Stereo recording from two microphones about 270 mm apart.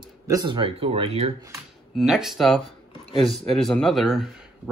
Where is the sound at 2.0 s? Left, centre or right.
Centre.